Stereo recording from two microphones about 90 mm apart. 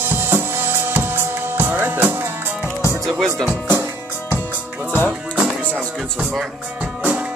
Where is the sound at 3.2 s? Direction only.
Centre (ahead or behind).